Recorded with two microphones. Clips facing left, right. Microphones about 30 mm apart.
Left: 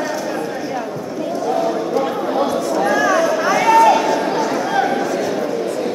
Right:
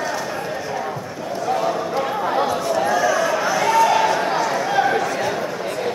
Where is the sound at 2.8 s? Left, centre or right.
Centre.